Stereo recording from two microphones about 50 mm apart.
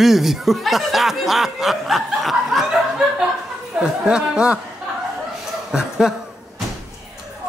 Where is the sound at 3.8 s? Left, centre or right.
Centre.